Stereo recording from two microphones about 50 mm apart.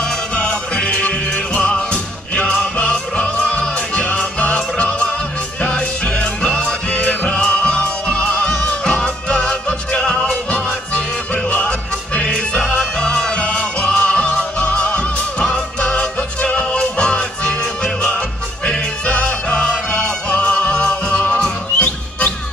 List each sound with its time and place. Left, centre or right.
0.0 s music: centre